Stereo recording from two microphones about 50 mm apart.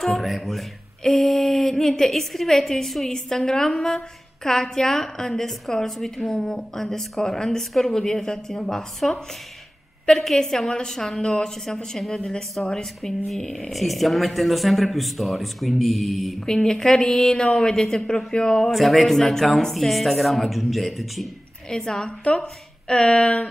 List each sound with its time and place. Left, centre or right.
0.0 s a woman's voice: centre
16.4 s a woman's voice: centre
18.7 s speech: centre
21.6 s a woman's voice: centre